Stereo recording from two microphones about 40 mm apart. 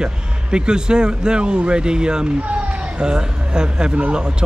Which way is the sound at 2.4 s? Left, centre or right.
Right.